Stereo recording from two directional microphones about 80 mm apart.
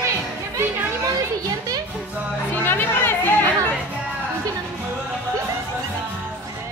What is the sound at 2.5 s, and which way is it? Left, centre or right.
Music, left.